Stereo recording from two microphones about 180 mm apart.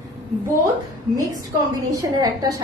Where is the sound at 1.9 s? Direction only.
20° right (ahead or behind).